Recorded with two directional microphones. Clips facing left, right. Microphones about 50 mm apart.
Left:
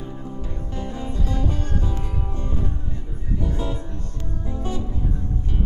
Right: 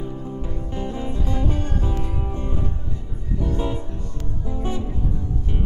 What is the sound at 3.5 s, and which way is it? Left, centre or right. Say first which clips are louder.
Music: right 3 dB; right.